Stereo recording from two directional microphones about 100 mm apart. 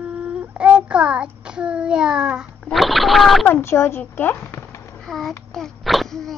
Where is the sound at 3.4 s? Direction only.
25° left (ahead or behind).